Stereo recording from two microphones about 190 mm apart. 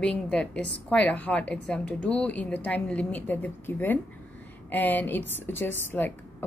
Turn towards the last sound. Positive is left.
turn(degrees=10)  # may be behind; listen again after turning